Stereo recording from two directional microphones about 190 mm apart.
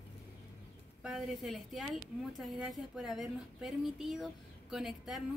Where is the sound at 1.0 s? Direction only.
Centre (ahead or behind).